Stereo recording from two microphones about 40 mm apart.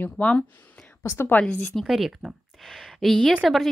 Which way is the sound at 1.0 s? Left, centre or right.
Left.